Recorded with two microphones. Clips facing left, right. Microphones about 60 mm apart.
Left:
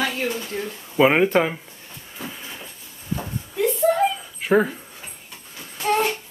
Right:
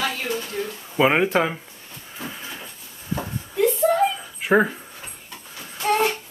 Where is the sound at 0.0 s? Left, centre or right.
Left.